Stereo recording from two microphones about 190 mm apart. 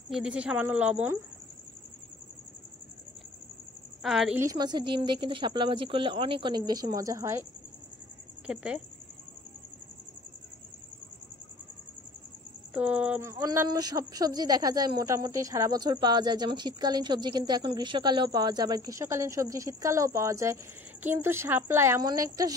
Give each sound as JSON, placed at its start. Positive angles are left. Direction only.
{"t": 0.1, "sound": "speech", "side_deg": -5}
{"t": 4.0, "sound": "a woman's voice", "side_deg": 0}
{"t": 4.4, "sound": "speech", "side_deg": -20}
{"t": 8.5, "sound": "a woman's voice", "side_deg": -5}
{"t": 12.7, "sound": "speech", "side_deg": -5}